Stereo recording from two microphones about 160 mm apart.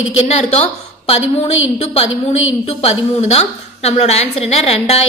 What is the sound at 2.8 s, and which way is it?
A woman's voice, 40° left (ahead or behind).